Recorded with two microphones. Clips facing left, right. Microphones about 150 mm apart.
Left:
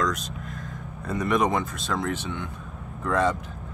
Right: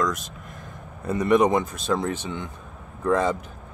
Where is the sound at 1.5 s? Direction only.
20° right (ahead or behind).